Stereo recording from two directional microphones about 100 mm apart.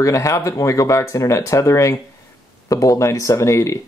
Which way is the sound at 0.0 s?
30° left (ahead or behind).